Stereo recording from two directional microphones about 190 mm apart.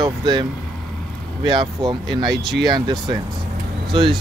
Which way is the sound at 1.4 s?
25° right (ahead or behind).